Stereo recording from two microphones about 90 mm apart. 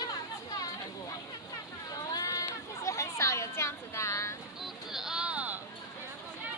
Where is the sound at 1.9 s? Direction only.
45° left (ahead or behind).